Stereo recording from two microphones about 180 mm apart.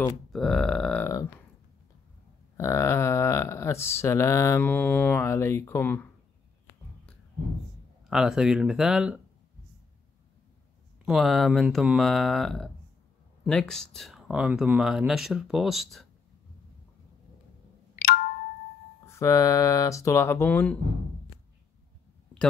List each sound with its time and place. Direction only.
0.3 s speech: centre (ahead or behind)
2.5 s speech: 15° left (ahead or behind)
8.1 s speech: 5° right (ahead or behind)
11.1 s speech: centre (ahead or behind)
17.9 s ringtone: 55° left (ahead or behind)
19.0 s speech: 15° left (ahead or behind)